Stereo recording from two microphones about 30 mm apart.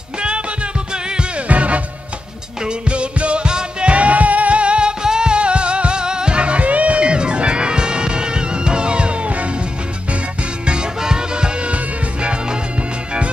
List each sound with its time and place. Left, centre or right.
1.5 s music: right
2.9 s music: right
3.4 s music: right
3.9 s music: right
5.0 s music: right
7.0 s music: right
11.0 s music: right